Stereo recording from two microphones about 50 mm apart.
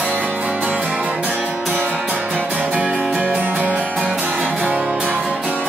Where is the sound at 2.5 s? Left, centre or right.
Right.